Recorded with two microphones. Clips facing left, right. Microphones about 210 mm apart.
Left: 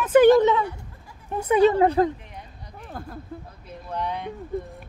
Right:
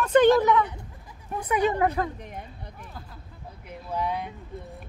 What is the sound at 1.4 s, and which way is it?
Speech, 25° left (ahead or behind).